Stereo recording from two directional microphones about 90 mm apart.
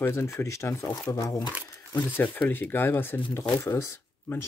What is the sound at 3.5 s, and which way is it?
Speech, 35° left (ahead or behind).